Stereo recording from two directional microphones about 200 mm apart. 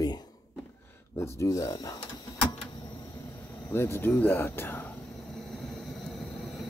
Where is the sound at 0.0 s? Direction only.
20° left (ahead or behind).